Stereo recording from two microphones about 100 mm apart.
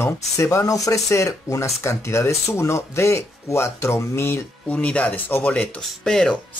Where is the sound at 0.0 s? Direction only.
30° left (ahead or behind).